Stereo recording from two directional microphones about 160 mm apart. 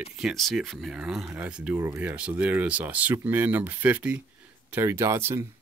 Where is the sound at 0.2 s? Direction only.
Centre (ahead or behind).